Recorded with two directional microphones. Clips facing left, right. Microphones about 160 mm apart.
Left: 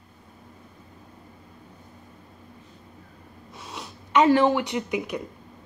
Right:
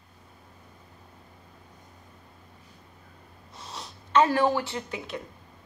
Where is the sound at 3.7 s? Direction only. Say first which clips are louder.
Left 1 dB; 10° left (ahead or behind).